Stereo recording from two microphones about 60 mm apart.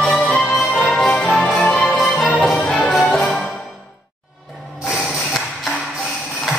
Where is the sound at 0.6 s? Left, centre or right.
Centre.